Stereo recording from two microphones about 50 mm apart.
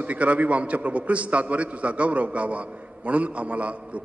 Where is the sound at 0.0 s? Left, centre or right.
Right.